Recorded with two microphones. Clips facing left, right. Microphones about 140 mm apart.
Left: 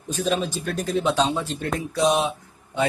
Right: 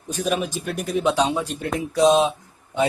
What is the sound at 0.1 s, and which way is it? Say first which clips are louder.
Speech: even; 10° right (ahead or behind).